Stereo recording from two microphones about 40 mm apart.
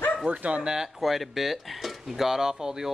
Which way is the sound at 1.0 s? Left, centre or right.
Centre.